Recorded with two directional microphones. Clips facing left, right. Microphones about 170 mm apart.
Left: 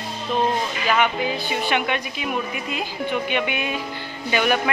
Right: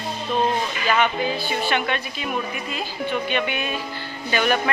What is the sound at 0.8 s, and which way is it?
A woman's voice, 10° left (ahead or behind).